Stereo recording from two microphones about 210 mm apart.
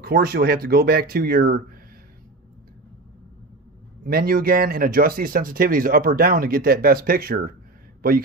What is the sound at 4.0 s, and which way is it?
Speech, 45° right (ahead or behind).